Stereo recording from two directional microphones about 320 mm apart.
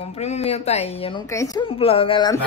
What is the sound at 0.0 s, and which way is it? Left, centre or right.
A woman's voice, centre.